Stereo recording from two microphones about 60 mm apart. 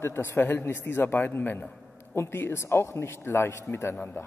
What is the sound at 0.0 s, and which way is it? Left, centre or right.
A man's voice, left.